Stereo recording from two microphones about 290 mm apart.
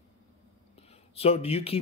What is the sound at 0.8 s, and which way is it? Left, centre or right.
Speech, left.